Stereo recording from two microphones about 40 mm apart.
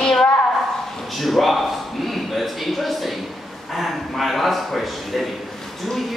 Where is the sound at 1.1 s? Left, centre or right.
Centre.